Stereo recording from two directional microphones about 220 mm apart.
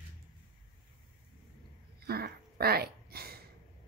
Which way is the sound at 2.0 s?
45° right (ahead or behind).